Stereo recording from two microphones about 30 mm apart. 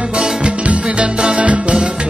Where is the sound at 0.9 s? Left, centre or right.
Right.